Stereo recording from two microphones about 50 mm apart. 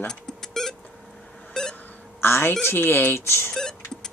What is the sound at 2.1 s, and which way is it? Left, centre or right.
Speech, left.